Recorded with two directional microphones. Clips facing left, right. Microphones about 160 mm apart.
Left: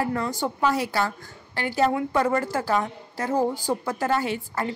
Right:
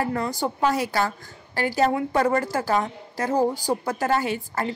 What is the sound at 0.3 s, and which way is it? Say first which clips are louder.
A woman's voice: right 1 dB; 35° right (ahead or behind).